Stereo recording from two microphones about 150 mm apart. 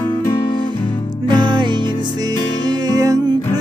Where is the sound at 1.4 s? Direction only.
30° right (ahead or behind).